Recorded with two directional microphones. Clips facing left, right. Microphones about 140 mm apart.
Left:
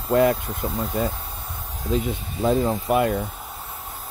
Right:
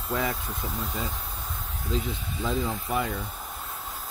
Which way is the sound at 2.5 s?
55° left (ahead or behind).